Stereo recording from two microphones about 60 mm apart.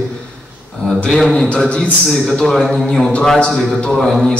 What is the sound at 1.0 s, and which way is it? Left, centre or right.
A man's voice, centre.